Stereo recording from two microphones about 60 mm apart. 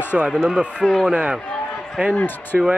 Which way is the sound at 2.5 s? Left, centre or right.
Centre.